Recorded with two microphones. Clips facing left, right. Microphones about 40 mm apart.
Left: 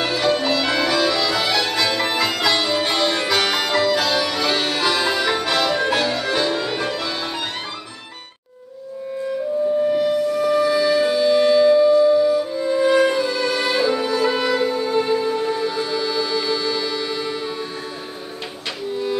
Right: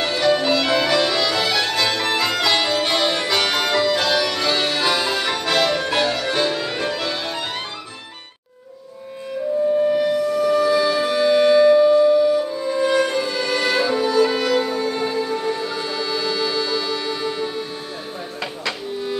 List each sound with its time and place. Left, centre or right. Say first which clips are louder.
0.0 s music: right 1 dB; centre
10.5 s music: left 1 dB; centre
11.7 s music: even; right
12.2 s music: even; centre
12.5 s music: left 2 dB; centre